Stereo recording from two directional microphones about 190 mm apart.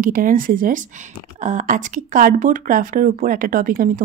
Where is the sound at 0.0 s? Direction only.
45° right (ahead or behind).